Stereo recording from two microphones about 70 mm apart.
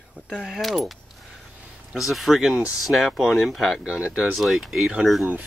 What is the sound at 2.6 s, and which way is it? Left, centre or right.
Speech, centre.